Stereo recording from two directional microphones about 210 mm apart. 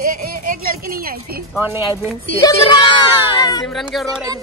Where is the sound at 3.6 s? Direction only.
Centre (ahead or behind).